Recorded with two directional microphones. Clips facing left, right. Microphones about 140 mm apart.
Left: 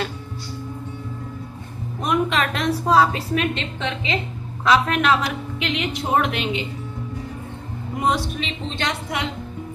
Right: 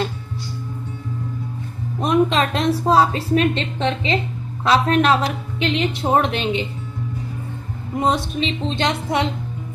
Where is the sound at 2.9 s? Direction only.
30° right (ahead or behind).